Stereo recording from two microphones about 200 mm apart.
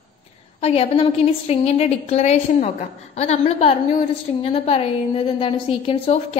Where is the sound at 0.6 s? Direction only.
30° left (ahead or behind).